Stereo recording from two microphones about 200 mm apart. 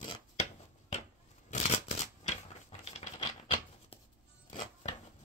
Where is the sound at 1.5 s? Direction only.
35° left (ahead or behind).